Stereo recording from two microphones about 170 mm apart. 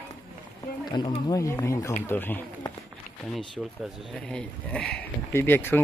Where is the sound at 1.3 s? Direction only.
20° left (ahead or behind).